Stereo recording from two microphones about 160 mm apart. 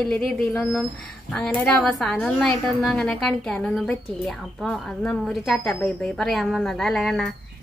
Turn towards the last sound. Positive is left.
turn(degrees=0)  # may be behind; listen again after turning